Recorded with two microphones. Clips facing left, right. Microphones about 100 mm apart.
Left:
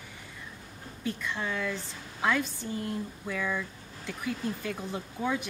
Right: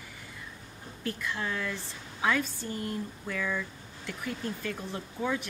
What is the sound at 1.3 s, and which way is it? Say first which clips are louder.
Speech: left 2 dB; 5° left (ahead or behind).